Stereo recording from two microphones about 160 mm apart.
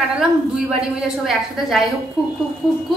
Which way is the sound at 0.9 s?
Centre (ahead or behind).